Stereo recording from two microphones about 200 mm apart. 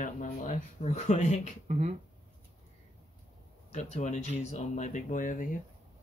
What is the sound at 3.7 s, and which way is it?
Speech, 35° left (ahead or behind).